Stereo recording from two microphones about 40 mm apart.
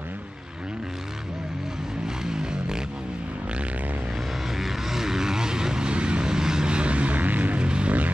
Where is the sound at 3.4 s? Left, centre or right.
Right.